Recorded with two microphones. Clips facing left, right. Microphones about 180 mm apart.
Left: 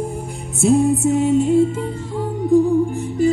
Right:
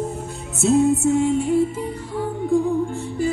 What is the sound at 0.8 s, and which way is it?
Music, 20° left (ahead or behind).